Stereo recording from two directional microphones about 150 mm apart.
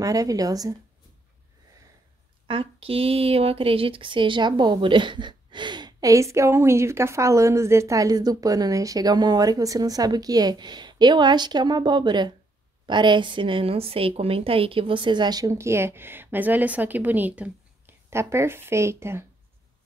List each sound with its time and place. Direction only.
0.0 s speech: 25° right (ahead or behind)
2.4 s speech: 35° right (ahead or behind); by 19.2 s 15° right (ahead or behind)